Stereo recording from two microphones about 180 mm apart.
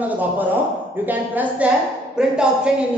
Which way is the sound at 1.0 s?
10° right (ahead or behind).